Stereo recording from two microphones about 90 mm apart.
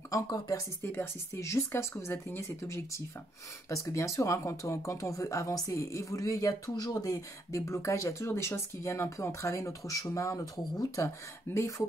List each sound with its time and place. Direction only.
0.1 s speech: 40° left (ahead or behind)
0.8 s speech: 30° left (ahead or behind)
11.5 s speech: 30° left (ahead or behind)